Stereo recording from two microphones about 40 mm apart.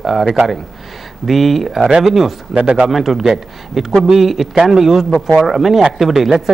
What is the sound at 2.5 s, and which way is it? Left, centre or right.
Speech, right.